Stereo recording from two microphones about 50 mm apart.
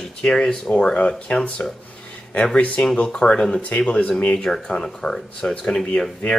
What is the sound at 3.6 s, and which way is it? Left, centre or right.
Speech, left.